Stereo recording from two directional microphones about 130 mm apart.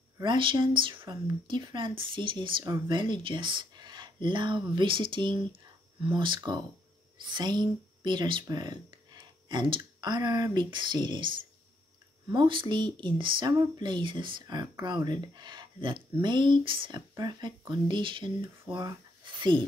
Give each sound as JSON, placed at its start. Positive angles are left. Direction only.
{"t": 0.2, "sound": "speech", "side_deg": -40}